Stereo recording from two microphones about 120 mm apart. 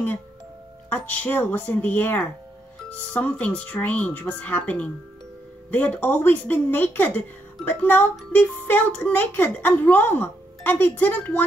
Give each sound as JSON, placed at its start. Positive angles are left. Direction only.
{"t": 0.8, "sound": "speech", "side_deg": 15}